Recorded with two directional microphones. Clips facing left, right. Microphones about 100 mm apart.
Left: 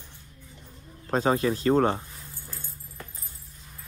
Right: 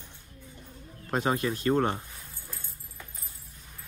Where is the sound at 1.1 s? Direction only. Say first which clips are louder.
Left 4 dB; 25° left (ahead or behind).